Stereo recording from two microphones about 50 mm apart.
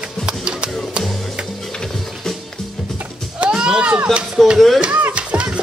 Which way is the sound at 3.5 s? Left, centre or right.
Centre.